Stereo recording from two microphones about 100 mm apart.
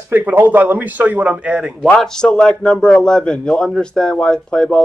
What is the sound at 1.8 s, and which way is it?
A man's voice, 5° left (ahead or behind).